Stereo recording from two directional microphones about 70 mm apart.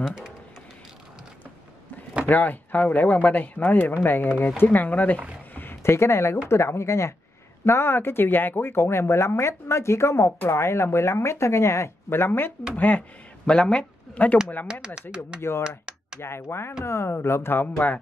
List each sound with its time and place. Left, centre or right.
2.2 s speech: left
5.5 s a sound: left
6.5 s speech: left
13.5 s speech: centre
15.0 s speech: centre
16.2 s speech: left